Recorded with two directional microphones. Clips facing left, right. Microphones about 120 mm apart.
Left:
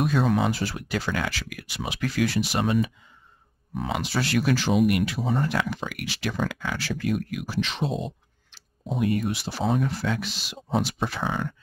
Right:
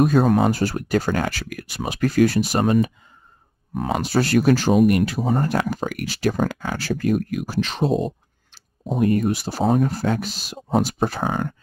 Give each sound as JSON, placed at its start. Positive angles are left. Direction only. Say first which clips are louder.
{"t": 0.0, "sound": "speech", "louder": "right 6 dB", "side_deg": -45}